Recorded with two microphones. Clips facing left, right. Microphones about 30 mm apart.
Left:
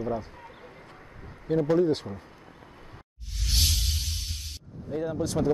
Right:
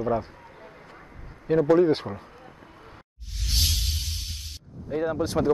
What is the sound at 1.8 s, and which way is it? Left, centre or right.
Speech, right.